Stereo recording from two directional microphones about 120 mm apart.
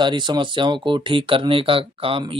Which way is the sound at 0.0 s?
40° right (ahead or behind).